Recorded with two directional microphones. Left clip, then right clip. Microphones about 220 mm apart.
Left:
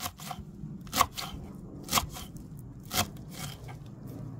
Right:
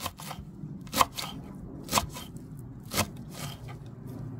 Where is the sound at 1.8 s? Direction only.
20° left (ahead or behind).